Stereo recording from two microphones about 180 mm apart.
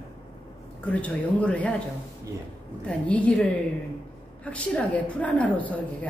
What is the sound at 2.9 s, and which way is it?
Speech, 5° left (ahead or behind).